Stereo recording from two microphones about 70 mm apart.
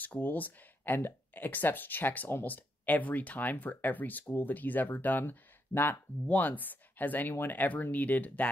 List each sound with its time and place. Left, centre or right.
0.0 s speech: left